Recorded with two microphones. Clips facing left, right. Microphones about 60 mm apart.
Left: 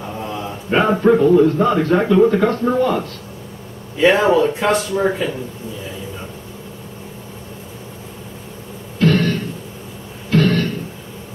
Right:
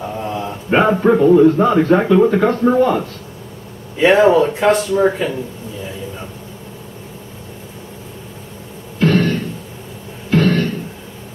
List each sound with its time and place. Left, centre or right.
0.2 s a man's voice: centre
9.0 s music: centre
10.3 s a sound: centre